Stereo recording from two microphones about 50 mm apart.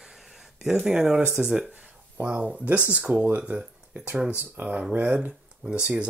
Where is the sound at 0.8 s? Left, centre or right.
Centre.